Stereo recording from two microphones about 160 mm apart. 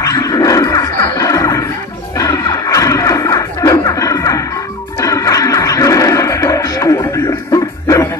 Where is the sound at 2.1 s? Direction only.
20° left (ahead or behind).